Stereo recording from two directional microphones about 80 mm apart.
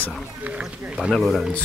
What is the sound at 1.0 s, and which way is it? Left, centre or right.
Speech, centre.